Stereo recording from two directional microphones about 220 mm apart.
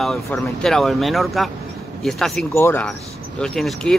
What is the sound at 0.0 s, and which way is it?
Speech, centre (ahead or behind).